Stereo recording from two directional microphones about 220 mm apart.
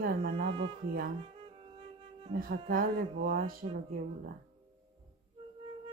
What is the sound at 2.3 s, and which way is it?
Speech, 40° right (ahead or behind).